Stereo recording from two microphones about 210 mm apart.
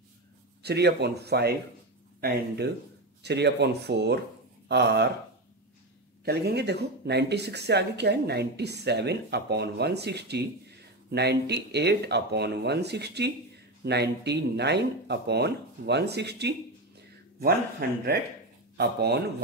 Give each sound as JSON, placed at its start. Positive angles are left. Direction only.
{"t": 0.6, "sound": "speech", "side_deg": -50}
{"t": 6.2, "sound": "speech", "side_deg": -50}